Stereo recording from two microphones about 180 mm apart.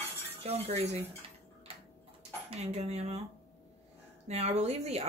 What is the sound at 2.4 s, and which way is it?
Speech, 35° right (ahead or behind).